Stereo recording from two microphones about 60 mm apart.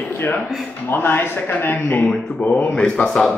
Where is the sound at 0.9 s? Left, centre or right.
Left.